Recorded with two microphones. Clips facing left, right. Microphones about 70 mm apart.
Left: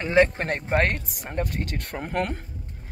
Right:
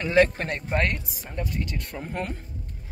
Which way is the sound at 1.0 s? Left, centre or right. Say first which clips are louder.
Left 3 dB; left.